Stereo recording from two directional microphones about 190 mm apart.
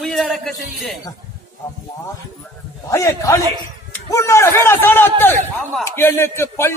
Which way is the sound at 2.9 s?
15° left (ahead or behind).